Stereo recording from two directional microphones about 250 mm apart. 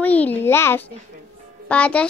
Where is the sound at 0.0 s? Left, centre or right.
Centre.